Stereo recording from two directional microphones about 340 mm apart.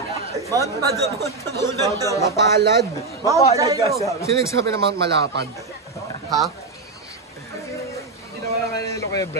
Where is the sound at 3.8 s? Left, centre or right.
Centre.